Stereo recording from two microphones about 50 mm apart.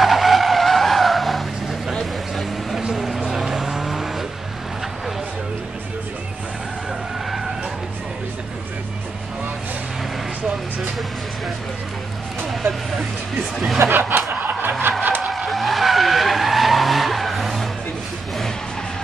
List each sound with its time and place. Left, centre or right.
0.0 s vehicle: centre
2.8 s vehicle: centre
13.7 s music: right
15.2 s vehicle: centre